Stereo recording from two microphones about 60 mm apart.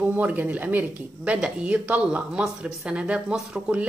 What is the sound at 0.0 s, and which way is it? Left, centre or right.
A woman's voice, right.